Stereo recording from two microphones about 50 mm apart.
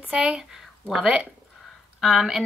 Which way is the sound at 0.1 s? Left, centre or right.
Centre.